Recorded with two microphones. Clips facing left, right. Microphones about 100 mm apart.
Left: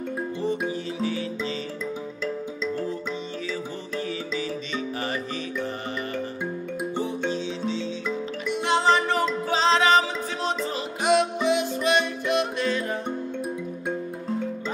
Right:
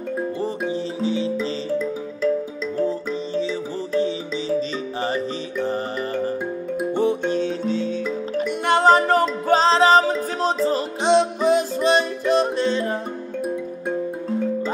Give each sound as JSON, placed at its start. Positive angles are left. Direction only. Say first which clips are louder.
{"t": 0.4, "sound": "music", "louder": "right 2 dB", "side_deg": -35}
{"t": 1.0, "sound": "music", "louder": "right 6 dB", "side_deg": -25}
{"t": 5.0, "sound": "music", "louder": "right 5 dB", "side_deg": -30}
{"t": 7.0, "sound": "music", "louder": "right 8 dB", "side_deg": -60}